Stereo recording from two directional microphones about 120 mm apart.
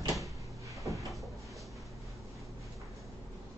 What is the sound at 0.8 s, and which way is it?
Cupboard open or close, 25° right (ahead or behind).